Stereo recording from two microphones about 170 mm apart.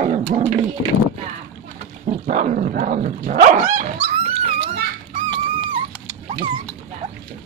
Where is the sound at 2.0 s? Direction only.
45° right (ahead or behind).